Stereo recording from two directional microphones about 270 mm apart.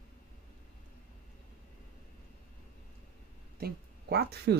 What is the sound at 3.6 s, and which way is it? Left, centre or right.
Speech, right.